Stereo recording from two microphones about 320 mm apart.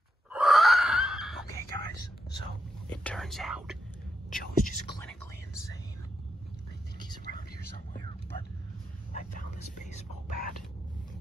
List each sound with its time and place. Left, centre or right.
0.3 s a sound: centre
2.9 s whispering: centre
4.3 s whispering: left
4.9 s whispering: centre
9.1 s whispering: left